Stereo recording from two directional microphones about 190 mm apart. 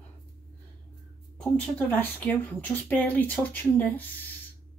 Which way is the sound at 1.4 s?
5° left (ahead or behind).